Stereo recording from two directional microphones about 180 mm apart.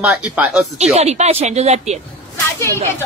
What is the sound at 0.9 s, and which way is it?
Speech, 40° right (ahead or behind).